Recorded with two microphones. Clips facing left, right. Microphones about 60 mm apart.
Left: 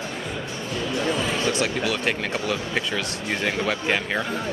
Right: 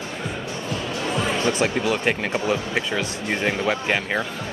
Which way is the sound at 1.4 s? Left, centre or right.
Right.